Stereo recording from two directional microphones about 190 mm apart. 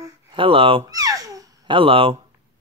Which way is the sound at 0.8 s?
20° right (ahead or behind).